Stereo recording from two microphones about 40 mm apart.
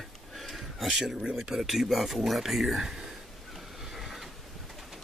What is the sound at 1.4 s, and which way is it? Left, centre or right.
Speech, centre.